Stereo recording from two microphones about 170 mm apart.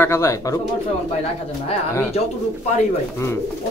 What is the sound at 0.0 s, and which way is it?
Speech, 15° left (ahead or behind).